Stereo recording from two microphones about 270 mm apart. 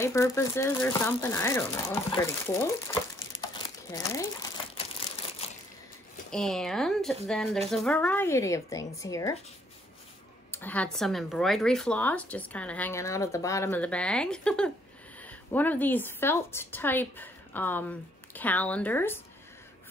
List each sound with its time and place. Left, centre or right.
0.0 s speech: centre
5.4 s crushing: left
6.3 s speech: centre
10.5 s a woman's voice: centre